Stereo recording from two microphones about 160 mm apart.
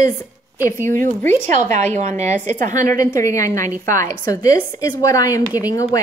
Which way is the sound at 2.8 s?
20° left (ahead or behind).